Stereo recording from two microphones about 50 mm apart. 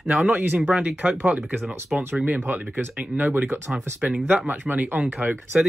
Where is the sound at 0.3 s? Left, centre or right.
Right.